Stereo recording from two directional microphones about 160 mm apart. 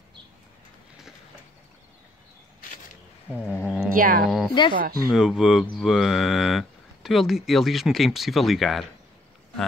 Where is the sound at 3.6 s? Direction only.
5° right (ahead or behind).